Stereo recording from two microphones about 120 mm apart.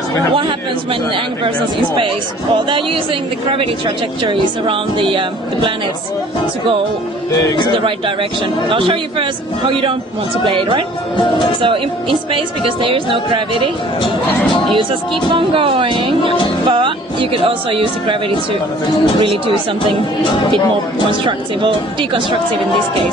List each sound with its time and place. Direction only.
2.7 s speech: 45° right (ahead or behind)
7.3 s a man's voice: 35° left (ahead or behind)
7.8 s speech: 45° right (ahead or behind)
15.3 s speech: 50° right (ahead or behind)
19.1 s speech: 45° right (ahead or behind)
21.2 s speech: 45° right (ahead or behind)